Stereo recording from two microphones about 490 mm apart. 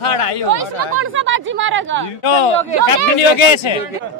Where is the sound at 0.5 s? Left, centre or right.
Right.